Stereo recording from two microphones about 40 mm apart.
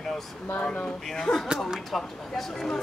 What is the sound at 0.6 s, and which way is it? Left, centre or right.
Speech, left.